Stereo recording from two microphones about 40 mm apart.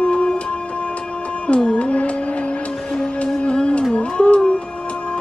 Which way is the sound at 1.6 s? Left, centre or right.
Left.